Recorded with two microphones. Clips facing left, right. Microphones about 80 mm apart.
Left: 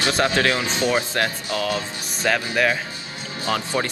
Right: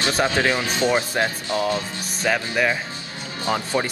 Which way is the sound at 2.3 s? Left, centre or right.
Centre.